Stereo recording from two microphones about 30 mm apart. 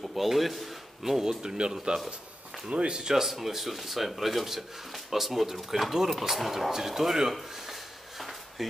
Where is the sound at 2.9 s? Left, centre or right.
Right.